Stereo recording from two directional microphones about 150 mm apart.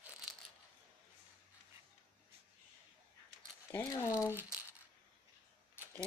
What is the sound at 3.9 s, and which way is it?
Speech, 20° left (ahead or behind).